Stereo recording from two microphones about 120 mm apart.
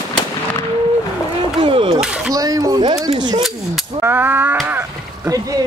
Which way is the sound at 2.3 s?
30° right (ahead or behind).